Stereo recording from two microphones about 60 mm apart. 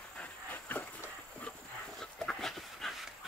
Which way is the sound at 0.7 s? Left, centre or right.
Left.